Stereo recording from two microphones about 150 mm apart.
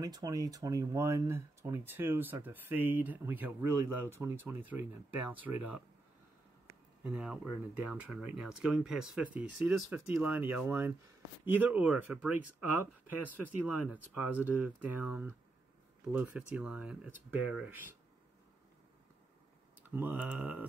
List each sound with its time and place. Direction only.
0.0 s speech: 25° right (ahead or behind)
7.0 s speech: 5° right (ahead or behind)
13.4 s speech: 10° right (ahead or behind)
19.9 s speech: 10° right (ahead or behind)